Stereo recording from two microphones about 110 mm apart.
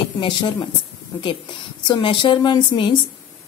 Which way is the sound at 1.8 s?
45° left (ahead or behind).